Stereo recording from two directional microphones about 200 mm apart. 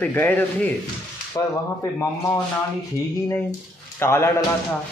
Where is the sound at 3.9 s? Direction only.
15° left (ahead or behind).